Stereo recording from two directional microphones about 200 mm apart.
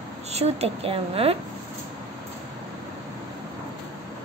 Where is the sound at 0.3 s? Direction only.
30° right (ahead or behind).